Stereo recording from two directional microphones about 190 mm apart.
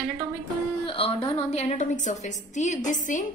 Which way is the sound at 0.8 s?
30° left (ahead or behind).